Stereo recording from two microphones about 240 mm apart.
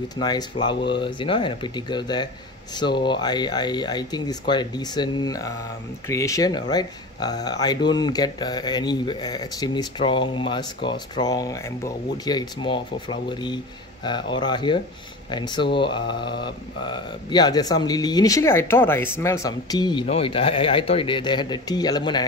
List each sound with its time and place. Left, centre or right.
0.2 s speech: centre